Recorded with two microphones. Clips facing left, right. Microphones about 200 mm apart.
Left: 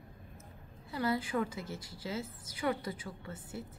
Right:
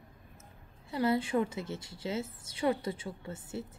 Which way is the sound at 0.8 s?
25° right (ahead or behind).